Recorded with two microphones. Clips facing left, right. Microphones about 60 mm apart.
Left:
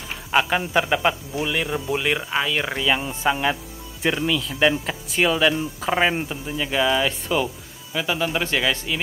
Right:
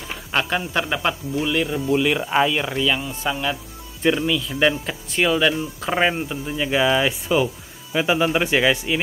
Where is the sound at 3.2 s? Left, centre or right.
Left.